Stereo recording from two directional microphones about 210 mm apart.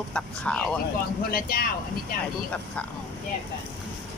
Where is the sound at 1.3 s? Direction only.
45° left (ahead or behind).